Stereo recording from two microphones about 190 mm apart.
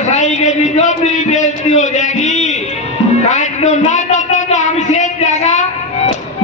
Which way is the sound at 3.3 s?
40° left (ahead or behind).